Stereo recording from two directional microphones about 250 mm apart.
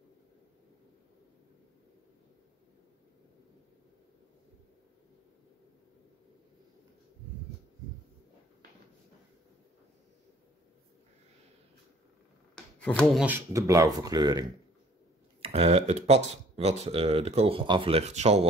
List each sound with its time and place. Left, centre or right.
12.5 s speech: centre
15.4 s speech: right